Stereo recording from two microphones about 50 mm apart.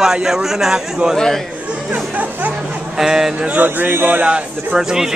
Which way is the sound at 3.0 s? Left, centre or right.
Centre.